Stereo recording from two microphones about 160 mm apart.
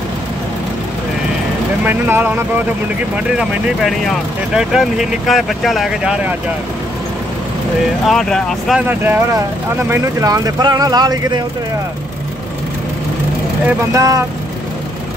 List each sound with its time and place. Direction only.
1.9 s speech: 10° right (ahead or behind)
3.3 s speech: centre (ahead or behind)
8.0 s speech: centre (ahead or behind)
8.8 s speech: 10° right (ahead or behind)
13.7 s speech: 20° right (ahead or behind)